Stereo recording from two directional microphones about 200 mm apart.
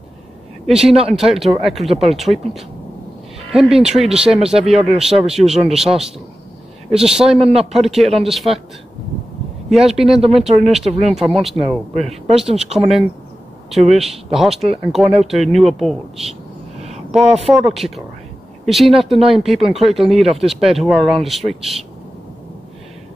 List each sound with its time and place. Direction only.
0.7 s speech: centre (ahead or behind)
7.3 s a man's voice: 30° right (ahead or behind)
7.7 s speech: centre (ahead or behind)
9.7 s speech: centre (ahead or behind)
10.8 s speech: 30° right (ahead or behind)
11.1 s speech: centre (ahead or behind)
13.7 s speech: centre (ahead or behind)
17.1 s speech: centre (ahead or behind)